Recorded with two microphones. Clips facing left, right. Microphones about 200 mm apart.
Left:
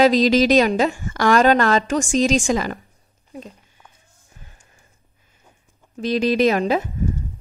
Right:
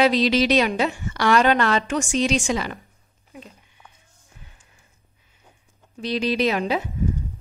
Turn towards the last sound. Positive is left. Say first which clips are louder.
# left 4 dB
turn(degrees=45)  # may be behind; listen again after turning